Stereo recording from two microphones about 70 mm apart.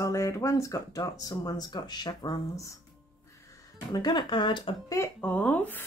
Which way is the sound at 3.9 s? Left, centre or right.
Left.